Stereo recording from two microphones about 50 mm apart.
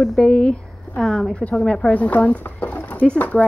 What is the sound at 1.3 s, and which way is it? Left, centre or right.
Speech, left.